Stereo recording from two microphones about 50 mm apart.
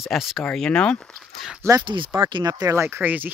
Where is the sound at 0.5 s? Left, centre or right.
Centre.